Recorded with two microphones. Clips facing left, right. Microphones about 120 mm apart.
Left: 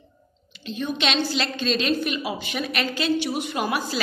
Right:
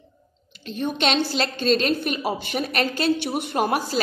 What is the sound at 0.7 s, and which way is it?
A woman's voice, 50° right (ahead or behind).